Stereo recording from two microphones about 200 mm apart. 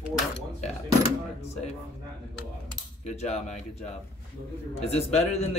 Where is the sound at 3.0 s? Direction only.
30° left (ahead or behind).